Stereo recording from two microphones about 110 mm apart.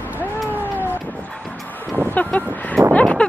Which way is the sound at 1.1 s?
5° left (ahead or behind).